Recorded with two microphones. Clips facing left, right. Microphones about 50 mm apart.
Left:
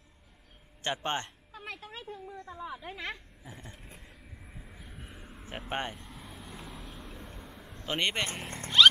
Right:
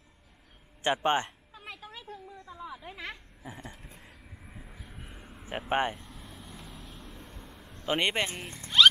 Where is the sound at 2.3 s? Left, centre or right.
Left.